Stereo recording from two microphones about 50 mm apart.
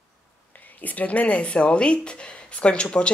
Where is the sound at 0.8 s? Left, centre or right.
Left.